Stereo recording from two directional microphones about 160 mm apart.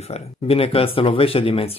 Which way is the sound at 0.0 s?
40° left (ahead or behind).